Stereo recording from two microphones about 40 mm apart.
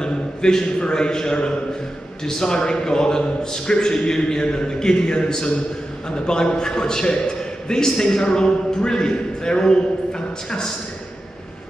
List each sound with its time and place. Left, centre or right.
0.0 s a man's voice: centre